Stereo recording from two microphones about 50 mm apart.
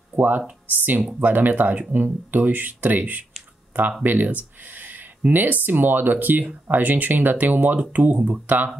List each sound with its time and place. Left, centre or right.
0.1 s speech: right